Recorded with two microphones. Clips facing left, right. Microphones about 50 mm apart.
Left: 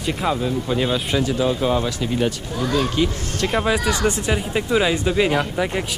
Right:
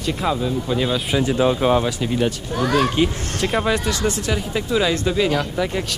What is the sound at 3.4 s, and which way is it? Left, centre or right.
Speech, centre.